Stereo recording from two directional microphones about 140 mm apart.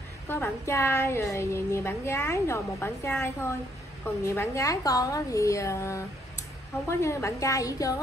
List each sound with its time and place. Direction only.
0.3 s a woman's voice: 20° left (ahead or behind)